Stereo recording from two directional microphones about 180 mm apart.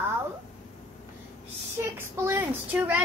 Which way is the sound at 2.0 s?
15° right (ahead or behind).